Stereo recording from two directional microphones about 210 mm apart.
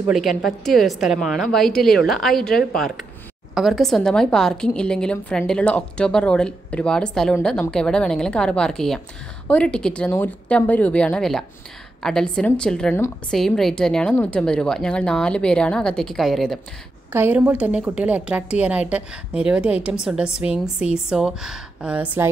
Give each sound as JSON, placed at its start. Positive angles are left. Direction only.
{"t": 0.0, "sound": "a woman's voice", "side_deg": 0}
{"t": 17.1, "sound": "a woman's voice", "side_deg": -10}